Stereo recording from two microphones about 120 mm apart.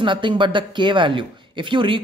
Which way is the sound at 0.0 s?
45° right (ahead or behind).